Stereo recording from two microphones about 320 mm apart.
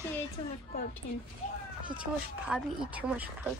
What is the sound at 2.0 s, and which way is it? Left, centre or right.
Speech, centre.